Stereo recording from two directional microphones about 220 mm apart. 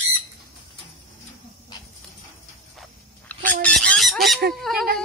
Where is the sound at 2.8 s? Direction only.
5° left (ahead or behind).